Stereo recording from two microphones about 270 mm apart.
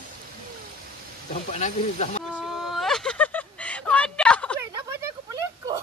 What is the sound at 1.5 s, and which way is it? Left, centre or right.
Speech, left.